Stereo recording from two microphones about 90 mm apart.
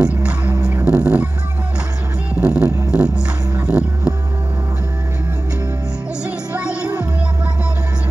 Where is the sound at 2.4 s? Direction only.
10° right (ahead or behind).